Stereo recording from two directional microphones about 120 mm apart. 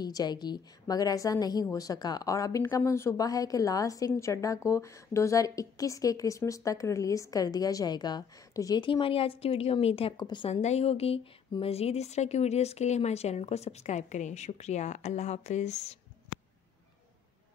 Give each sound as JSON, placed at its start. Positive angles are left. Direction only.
{"t": 0.0, "sound": "a woman's voice", "side_deg": 35}
{"t": 10.1, "sound": "a woman's voice", "side_deg": 40}
{"t": 10.5, "sound": "a woman's voice", "side_deg": 65}